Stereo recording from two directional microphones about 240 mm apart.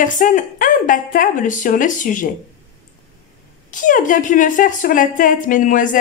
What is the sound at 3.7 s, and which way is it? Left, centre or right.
Speech, left.